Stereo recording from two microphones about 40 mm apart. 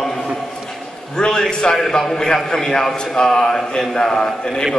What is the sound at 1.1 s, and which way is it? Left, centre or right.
A man's voice, centre.